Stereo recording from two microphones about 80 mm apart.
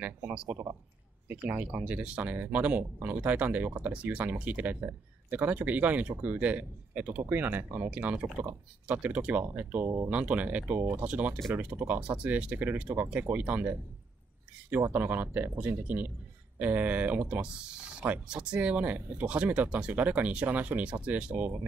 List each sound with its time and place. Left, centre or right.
0.0 s speech: centre
0.5 s speech: right
1.3 s speech: centre
14.8 s speech: right